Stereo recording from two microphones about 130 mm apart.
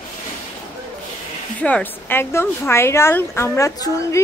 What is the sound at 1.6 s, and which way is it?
Speech, 10° left (ahead or behind).